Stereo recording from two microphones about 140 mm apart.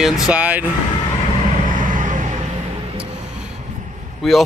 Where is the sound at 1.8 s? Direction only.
70° right (ahead or behind).